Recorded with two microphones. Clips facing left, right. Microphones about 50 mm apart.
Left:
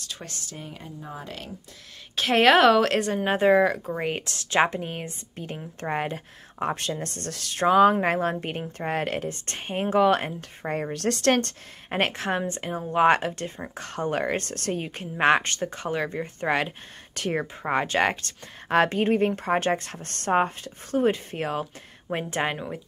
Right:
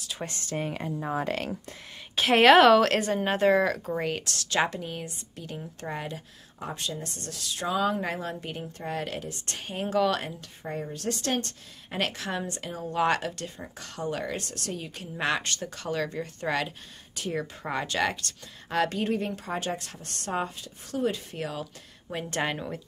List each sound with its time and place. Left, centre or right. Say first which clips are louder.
0.2 s speech: right 3 dB; right
0.6 s speech: right 11 dB; right
2.1 s a woman's voice: right 1 dB; centre
3.3 s speech: left 4 dB; centre
4.1 s speech: left 3 dB; left
10.6 s a woman's voice: left 6 dB; left
12.0 s speech: left 5 dB; left
22.3 s speech: even; centre